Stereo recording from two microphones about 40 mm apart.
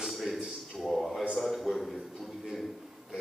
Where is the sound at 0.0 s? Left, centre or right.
Centre.